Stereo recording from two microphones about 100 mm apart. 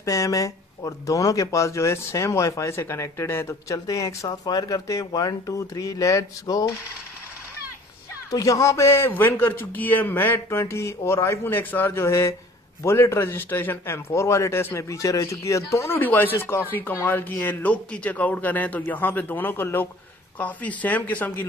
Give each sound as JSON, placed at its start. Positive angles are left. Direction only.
{"t": 0.0, "sound": "speech", "side_deg": 35}
{"t": 8.3, "sound": "a man's voice", "side_deg": 35}